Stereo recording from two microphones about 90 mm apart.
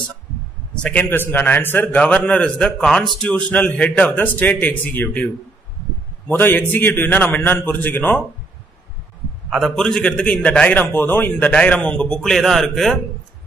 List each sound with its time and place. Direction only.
0.8 s a man's voice: 15° left (ahead or behind)
9.5 s a man's voice: centre (ahead or behind)